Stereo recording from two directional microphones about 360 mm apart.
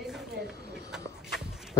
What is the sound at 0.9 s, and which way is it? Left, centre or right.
Walk, centre.